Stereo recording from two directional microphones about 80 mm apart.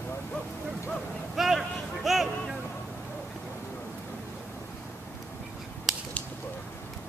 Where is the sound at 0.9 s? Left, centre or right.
Centre.